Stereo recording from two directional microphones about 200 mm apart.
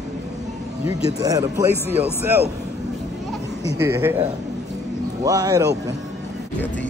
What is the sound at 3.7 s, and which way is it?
Speech, 15° right (ahead or behind).